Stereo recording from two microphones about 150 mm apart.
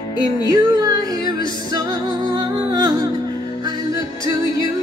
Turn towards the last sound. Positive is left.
turn(degrees=-25)  # may be behind; listen again after turning